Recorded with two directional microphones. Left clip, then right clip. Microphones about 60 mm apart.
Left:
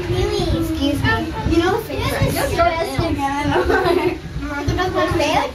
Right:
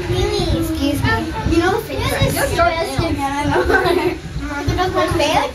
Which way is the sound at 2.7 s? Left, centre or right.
Left.